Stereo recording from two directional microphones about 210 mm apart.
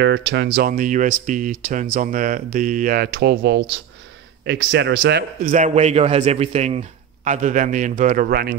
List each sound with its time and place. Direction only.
0.0 s a man's voice: 55° right (ahead or behind)
5.4 s speech: 40° right (ahead or behind)